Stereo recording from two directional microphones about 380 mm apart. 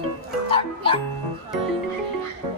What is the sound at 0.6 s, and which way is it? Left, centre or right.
Music, centre.